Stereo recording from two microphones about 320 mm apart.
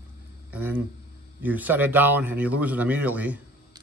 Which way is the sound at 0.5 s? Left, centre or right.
Centre.